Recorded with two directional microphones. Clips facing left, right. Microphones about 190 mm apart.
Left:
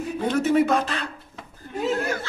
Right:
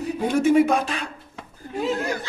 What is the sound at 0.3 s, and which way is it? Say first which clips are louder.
Speech: right 2 dB; 10° right (ahead or behind).